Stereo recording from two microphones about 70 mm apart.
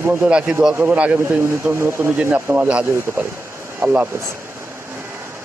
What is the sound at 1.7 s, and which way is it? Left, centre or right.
Speech, right.